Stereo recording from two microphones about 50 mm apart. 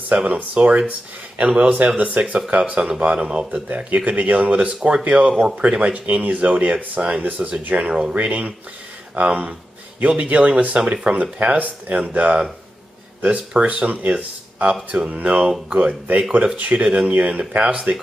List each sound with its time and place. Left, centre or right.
0.1 s speech: right
3.6 s speech: right
6.7 s speech: centre
7.2 s speech: right
7.9 s speech: centre
11.3 s speech: right
13.6 s speech: right